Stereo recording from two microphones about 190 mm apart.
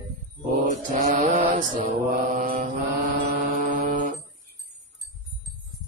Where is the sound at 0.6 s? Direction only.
40° right (ahead or behind).